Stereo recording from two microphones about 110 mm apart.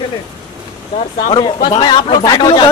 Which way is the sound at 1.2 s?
45° left (ahead or behind).